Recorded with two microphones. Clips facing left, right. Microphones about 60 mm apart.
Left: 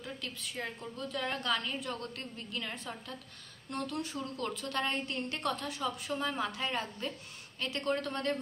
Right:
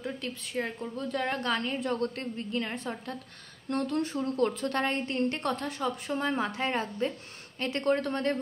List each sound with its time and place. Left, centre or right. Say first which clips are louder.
0.0 s a woman's voice: right 6 dB; right